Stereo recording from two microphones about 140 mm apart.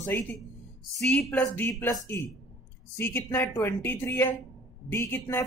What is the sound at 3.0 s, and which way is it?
Speech, 15° left (ahead or behind).